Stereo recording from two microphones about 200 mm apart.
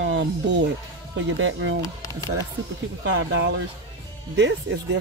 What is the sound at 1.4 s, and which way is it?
Speech, 70° right (ahead or behind).